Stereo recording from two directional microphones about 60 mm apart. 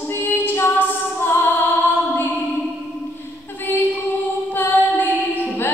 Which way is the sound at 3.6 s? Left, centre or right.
Left.